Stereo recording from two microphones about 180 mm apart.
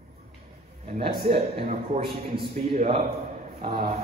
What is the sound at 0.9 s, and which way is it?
A man's voice, 35° right (ahead or behind).